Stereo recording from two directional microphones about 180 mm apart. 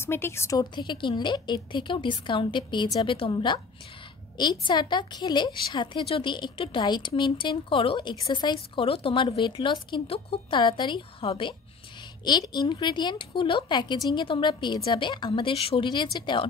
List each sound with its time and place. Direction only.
0.0 s a woman's voice: 15° left (ahead or behind)